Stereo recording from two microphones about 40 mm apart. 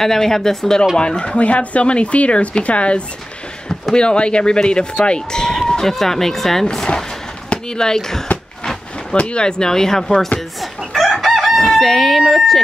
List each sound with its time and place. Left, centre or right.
0.0 s speech: centre
0.9 s speech: left
7.4 s a sound: left
7.8 s speech: centre
9.1 s speech: left
10.6 s chicken: centre
12.3 s speech: centre